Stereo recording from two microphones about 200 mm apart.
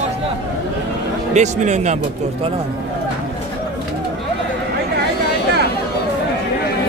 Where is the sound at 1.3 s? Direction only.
35° right (ahead or behind).